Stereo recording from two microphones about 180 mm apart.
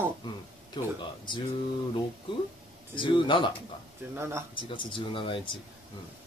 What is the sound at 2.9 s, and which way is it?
Speech, 25° left (ahead or behind).